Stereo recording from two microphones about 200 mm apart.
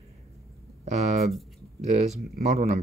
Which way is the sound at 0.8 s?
35° right (ahead or behind).